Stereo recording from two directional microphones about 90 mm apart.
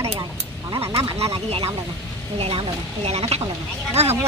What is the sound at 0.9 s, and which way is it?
Speech, 90° right.